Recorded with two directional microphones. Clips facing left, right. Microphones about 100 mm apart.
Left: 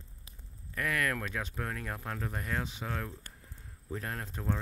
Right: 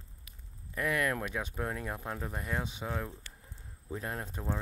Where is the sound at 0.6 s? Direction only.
20° right (ahead or behind).